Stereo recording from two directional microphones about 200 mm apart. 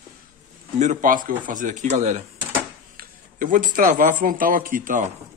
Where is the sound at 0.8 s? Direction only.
40° right (ahead or behind).